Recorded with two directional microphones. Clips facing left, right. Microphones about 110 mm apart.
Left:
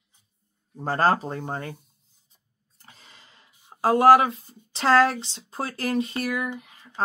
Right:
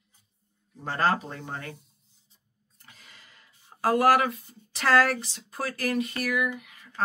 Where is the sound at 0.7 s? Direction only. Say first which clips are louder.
Left 4 dB; 40° left (ahead or behind).